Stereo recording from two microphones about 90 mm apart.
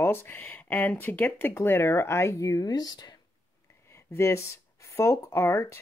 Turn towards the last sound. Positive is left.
turn(degrees=30)  # may be behind; listen again after turning